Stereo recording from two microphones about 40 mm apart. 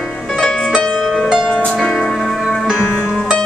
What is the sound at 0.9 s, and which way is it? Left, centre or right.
Music, centre.